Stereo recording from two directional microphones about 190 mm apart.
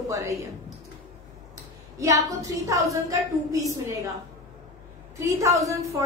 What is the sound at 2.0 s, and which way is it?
Speech, 15° right (ahead or behind).